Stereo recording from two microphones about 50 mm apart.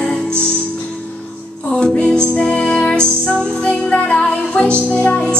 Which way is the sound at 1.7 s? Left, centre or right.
Centre.